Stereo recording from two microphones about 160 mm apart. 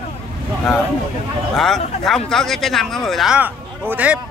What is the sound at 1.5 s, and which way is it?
Speech, centre (ahead or behind).